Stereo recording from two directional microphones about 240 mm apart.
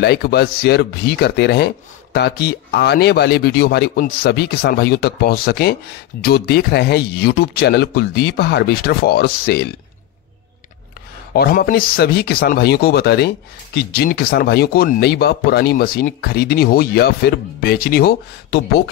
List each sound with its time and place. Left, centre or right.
0.0 s speech: left
11.3 s speech: left